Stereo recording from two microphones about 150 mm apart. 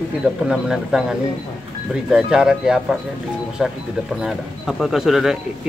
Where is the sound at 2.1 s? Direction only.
5° right (ahead or behind).